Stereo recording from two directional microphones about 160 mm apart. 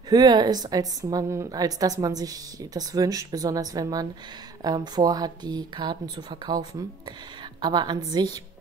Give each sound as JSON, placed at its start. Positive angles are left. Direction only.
{"t": 0.1, "sound": "a woman's voice", "side_deg": -25}
{"t": 7.6, "sound": "a woman's voice", "side_deg": -25}